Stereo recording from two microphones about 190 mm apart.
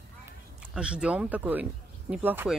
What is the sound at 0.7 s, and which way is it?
Speech, 5° right (ahead or behind).